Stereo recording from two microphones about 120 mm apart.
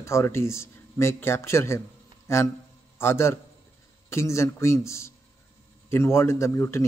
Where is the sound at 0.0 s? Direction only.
20° left (ahead or behind).